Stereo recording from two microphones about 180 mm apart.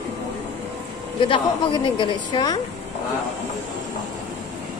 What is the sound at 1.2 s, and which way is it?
A woman's voice, 25° left (ahead or behind).